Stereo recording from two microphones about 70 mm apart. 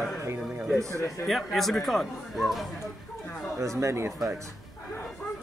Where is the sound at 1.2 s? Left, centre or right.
Centre.